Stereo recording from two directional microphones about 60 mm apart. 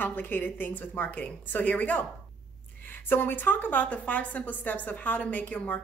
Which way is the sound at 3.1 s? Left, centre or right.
Left.